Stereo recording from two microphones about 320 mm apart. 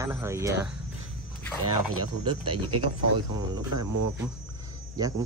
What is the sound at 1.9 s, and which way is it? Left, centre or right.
Speech, right.